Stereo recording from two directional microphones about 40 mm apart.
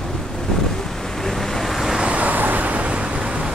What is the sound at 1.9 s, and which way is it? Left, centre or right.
Vehicle, right.